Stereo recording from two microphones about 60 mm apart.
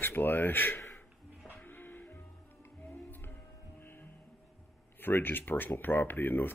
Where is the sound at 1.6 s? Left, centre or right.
Left.